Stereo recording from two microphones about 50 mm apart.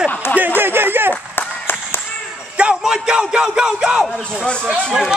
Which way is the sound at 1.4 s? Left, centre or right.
Left.